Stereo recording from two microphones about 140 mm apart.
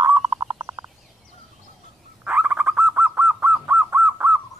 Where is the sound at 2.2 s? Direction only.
10° right (ahead or behind).